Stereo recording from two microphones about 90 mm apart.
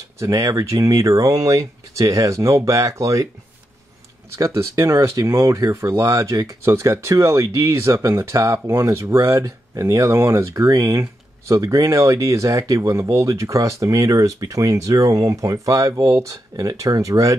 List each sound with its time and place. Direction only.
0.2 s speech: 40° right (ahead or behind)
4.3 s speech: 30° right (ahead or behind)